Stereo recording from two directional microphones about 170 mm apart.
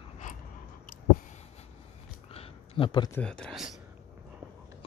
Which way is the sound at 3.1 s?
5° left (ahead or behind).